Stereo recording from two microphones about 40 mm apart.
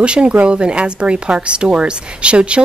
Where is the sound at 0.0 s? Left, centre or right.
Right.